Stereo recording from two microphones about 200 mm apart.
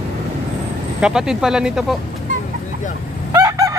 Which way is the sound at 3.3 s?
15° right (ahead or behind).